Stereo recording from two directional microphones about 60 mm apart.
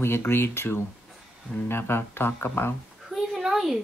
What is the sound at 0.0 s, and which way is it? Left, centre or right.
Speech, left.